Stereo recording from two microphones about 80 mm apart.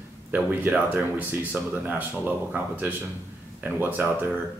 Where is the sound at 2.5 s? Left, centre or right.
Right.